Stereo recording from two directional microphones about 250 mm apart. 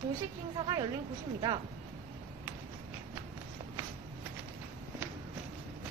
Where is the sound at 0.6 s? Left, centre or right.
Centre.